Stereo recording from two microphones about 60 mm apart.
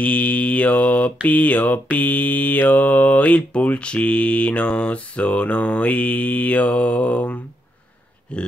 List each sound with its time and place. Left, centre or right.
0.0 s mantra: left
8.3 s speech: centre